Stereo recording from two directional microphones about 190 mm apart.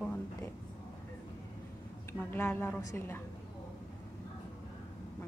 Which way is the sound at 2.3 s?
10° left (ahead or behind).